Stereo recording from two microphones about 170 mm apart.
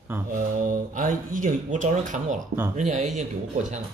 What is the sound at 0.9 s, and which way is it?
Speech, 50° right (ahead or behind).